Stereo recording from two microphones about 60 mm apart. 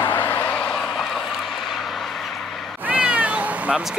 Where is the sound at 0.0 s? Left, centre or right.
Left.